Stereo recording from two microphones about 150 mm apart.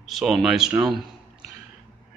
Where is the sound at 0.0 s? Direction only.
Centre (ahead or behind).